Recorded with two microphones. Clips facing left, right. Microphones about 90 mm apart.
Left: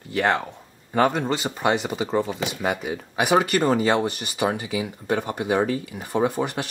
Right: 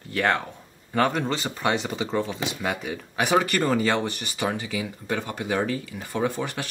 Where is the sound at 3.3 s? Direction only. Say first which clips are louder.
Left 2 dB; 20° left (ahead or behind).